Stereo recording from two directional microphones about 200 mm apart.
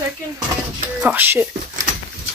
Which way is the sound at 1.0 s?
10° right (ahead or behind).